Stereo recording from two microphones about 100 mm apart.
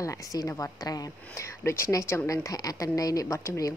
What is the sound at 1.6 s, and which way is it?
Speech, 25° left (ahead or behind).